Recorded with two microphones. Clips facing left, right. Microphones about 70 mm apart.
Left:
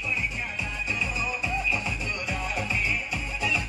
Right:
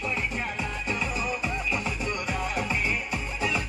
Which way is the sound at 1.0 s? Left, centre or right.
Right.